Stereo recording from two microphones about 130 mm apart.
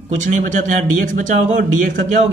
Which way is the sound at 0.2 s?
75° right (ahead or behind).